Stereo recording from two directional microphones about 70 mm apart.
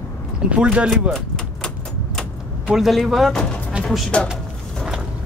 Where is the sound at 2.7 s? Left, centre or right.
Centre.